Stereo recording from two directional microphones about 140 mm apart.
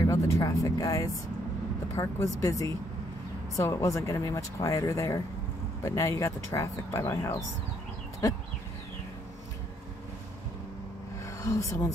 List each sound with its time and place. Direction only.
0.0 s speech: 25° left (ahead or behind)
11.4 s speech: 20° left (ahead or behind)